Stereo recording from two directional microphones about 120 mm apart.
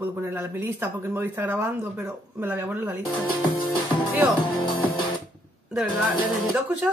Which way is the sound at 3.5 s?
45° left (ahead or behind).